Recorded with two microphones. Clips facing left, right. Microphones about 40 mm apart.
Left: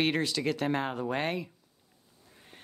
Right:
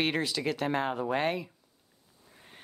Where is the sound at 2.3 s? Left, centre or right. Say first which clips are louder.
Even; centre.